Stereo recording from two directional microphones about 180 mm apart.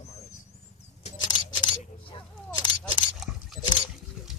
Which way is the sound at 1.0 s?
25° left (ahead or behind).